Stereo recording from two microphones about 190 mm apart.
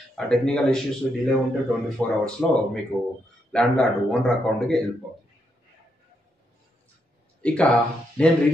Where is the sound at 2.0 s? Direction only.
5° left (ahead or behind).